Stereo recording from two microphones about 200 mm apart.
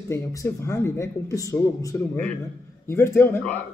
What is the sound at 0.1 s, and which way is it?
Speech, 15° left (ahead or behind).